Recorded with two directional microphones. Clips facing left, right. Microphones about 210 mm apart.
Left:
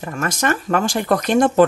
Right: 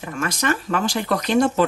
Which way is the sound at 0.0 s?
45° left (ahead or behind).